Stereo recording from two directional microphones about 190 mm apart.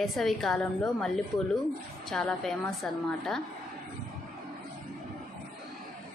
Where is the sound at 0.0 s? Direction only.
Centre (ahead or behind).